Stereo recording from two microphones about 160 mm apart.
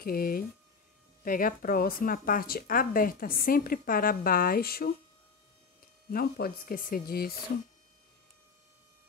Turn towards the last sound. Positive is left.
turn(degrees=70)  # may be behind; listen again after turning